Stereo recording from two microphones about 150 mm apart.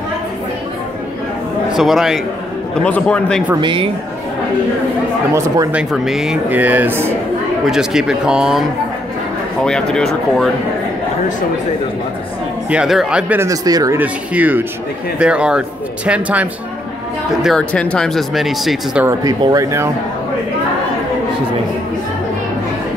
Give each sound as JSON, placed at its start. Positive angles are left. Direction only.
{"t": 1.7, "sound": "speech", "side_deg": 0}
{"t": 2.7, "sound": "a man's voice", "side_deg": 10}
{"t": 3.6, "sound": "speech", "side_deg": -35}
{"t": 5.3, "sound": "speech", "side_deg": -20}
{"t": 5.7, "sound": "speech", "side_deg": -5}
{"t": 7.6, "sound": "speech", "side_deg": 0}
{"t": 12.6, "sound": "speech", "side_deg": -5}
{"t": 13.4, "sound": "speech", "side_deg": -25}
{"t": 13.9, "sound": "speech", "side_deg": -10}
{"t": 17.4, "sound": "speech", "side_deg": 5}
{"t": 19.4, "sound": "speech", "side_deg": -20}